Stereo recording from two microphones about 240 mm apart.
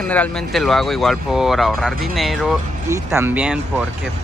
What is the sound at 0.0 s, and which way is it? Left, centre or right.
Speech, centre.